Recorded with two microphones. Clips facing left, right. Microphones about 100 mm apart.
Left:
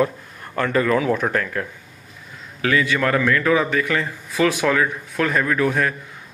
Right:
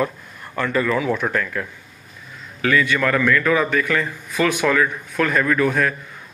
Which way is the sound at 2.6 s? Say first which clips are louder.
Right 1 dB; 25° left (ahead or behind).